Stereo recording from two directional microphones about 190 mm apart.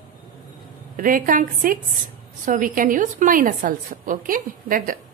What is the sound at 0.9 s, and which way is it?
A woman's voice, 45° right (ahead or behind).